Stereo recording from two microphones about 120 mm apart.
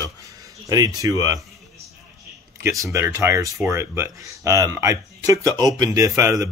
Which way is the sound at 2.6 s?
25° right (ahead or behind).